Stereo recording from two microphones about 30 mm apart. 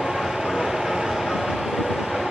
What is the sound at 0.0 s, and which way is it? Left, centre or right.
Vehicle, centre.